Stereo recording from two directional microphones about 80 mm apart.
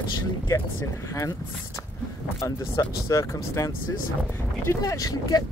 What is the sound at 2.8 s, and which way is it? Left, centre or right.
Speech, left.